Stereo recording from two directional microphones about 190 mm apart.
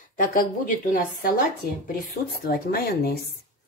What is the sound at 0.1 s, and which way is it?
Speech, 50° left (ahead or behind).